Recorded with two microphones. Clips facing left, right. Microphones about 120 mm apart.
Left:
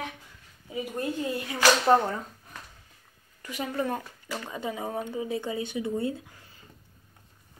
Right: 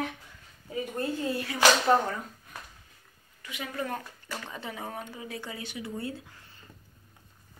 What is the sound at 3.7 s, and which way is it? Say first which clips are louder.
A woman's voice: left 3 dB; 15° left (ahead or behind).